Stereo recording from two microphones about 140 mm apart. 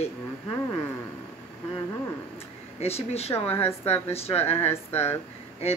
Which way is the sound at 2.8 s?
50° left (ahead or behind).